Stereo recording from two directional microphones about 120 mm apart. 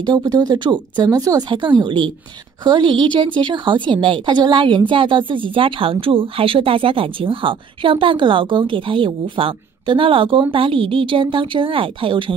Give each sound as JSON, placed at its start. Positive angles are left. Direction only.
{"t": 0.0, "sound": "a woman's voice", "side_deg": -35}